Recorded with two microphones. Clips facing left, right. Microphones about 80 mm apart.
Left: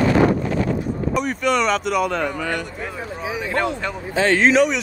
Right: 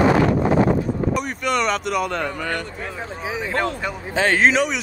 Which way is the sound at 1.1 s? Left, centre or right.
Centre.